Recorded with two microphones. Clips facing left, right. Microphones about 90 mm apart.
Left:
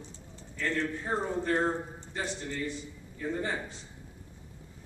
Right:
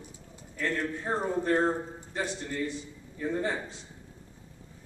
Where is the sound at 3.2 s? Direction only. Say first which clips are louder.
Right 2 dB; 5° right (ahead or behind).